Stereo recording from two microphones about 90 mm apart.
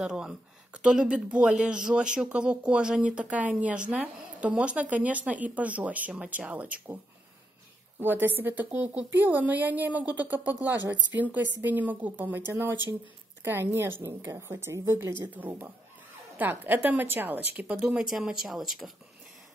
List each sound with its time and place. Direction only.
0.0 s speech: 10° right (ahead or behind)
8.0 s a woman's voice: 20° right (ahead or behind)
17.8 s speech: 5° right (ahead or behind)